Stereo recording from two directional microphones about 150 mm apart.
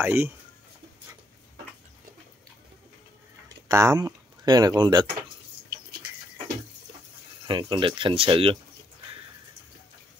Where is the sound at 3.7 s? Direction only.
20° right (ahead or behind).